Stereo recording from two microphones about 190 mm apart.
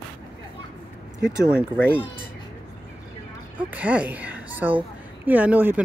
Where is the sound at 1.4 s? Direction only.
5° right (ahead or behind).